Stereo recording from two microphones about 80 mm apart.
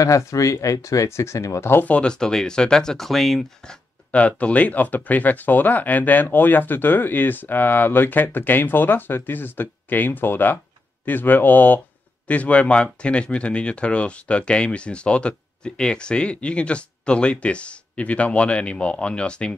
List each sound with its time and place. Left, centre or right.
0.0 s speech: left; by 3.7 s centre
4.1 s speech: centre